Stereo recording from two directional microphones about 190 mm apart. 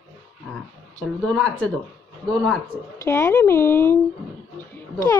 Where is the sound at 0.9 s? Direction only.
5° left (ahead or behind).